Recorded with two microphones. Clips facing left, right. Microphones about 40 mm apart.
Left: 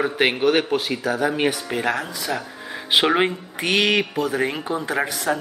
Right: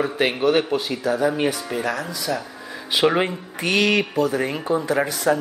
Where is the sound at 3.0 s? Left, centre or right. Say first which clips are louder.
Even; centre.